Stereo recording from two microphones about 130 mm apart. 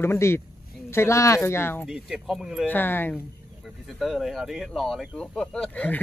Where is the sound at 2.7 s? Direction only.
15° left (ahead or behind).